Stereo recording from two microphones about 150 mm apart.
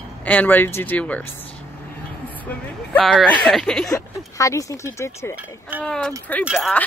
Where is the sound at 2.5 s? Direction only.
5° left (ahead or behind).